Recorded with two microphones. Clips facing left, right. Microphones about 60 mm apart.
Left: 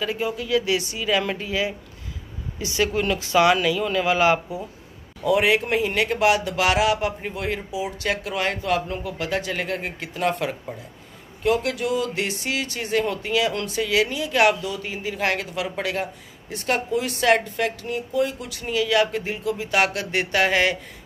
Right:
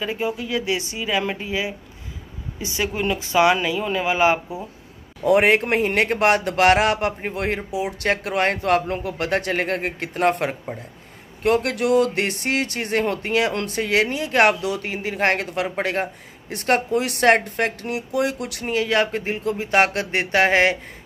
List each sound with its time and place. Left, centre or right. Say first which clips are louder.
0.0 s speech: right 1 dB; right
5.2 s a man's voice: right 3 dB; right
11.4 s a man's voice: right 3 dB; right
14.6 s a man's voice: right 4 dB; right
17.9 s speech: even; right